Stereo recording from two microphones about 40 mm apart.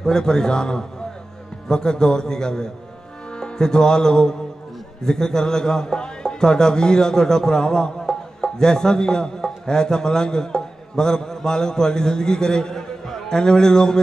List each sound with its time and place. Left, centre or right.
0.0 s a man's voice: centre